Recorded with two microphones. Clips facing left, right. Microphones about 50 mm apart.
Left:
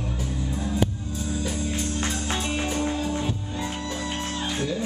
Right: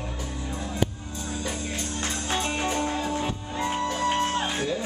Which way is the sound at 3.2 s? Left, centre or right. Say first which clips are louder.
Right 1 dB; right.